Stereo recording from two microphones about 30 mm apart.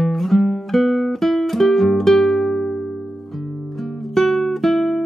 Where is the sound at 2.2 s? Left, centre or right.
Left.